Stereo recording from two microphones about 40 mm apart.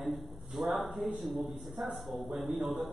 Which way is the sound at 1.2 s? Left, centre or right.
Centre.